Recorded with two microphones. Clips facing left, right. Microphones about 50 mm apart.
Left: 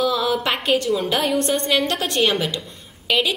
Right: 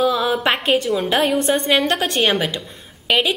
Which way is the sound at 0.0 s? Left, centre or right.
Centre.